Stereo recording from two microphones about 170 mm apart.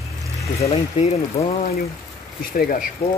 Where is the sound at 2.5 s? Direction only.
55° left (ahead or behind).